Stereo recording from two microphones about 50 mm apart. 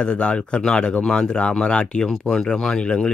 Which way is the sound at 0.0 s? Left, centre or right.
Left.